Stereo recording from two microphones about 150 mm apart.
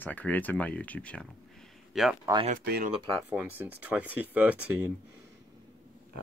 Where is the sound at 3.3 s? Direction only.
10° right (ahead or behind).